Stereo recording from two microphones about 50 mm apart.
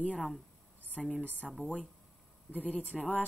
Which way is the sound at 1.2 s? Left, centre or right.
Left.